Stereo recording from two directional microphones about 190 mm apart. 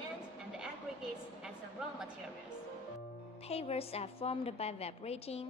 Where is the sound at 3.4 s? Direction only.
30° left (ahead or behind).